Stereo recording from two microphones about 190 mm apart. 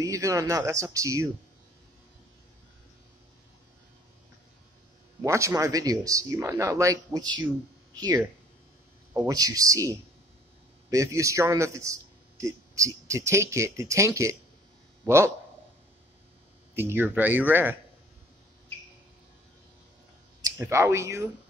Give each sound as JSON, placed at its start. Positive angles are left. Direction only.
{"t": 0.0, "sound": "a man's voice", "side_deg": -15}
{"t": 5.2, "sound": "a man's voice", "side_deg": -15}
{"t": 16.7, "sound": "a man's voice", "side_deg": -10}
{"t": 20.5, "sound": "a man's voice", "side_deg": -15}